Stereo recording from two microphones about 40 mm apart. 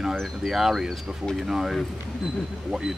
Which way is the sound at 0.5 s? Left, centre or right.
Centre.